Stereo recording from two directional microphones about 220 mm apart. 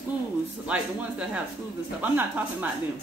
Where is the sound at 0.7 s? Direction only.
5° right (ahead or behind).